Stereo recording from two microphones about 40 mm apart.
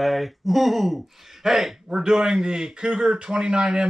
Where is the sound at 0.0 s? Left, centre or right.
Centre.